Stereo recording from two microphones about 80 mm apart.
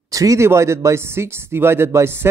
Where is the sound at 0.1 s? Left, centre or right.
Right.